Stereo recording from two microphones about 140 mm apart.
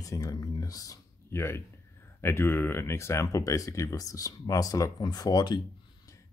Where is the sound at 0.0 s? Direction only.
25° left (ahead or behind).